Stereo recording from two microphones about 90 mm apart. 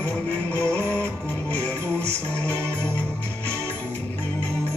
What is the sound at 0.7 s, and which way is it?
Music, 20° left (ahead or behind).